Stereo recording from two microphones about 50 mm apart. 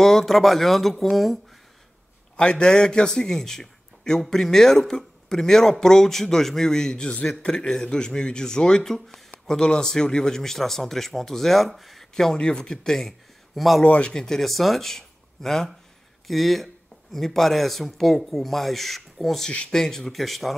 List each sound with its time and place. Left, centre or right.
0.0 s speech: centre
2.3 s a man's voice: centre
12.4 s a man's voice: centre
13.6 s speech: centre
13.8 s speech: left
14.1 s speech: centre